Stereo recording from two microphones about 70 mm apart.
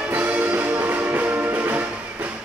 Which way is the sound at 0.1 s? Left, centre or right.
Right.